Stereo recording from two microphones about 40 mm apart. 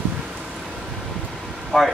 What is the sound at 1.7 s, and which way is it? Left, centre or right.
Speech, centre.